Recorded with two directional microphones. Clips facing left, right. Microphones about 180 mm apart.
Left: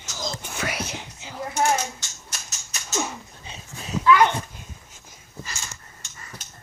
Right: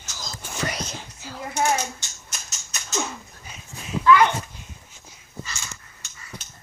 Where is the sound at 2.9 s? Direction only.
10° left (ahead or behind).